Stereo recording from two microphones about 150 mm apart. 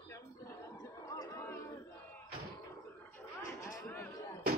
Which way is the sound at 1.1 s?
20° left (ahead or behind).